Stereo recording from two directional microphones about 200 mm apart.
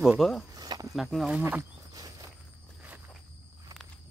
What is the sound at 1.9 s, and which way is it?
Walk, 20° right (ahead or behind).